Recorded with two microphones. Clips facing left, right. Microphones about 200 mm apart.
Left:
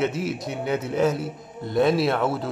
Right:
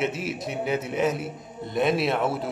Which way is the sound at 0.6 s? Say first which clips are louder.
Left 3 dB; 5° right (ahead or behind).